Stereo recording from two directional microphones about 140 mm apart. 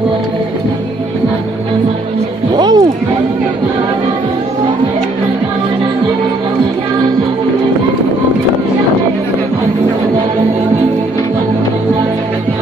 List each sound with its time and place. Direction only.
2.5 s music: 30° right (ahead or behind)